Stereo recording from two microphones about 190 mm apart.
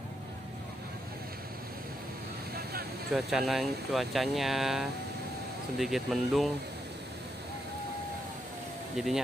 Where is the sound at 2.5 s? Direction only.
55° right (ahead or behind).